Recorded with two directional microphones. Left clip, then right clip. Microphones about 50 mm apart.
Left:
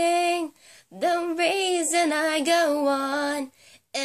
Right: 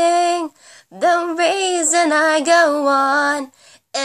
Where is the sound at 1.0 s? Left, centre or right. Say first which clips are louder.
Right 8 dB; right.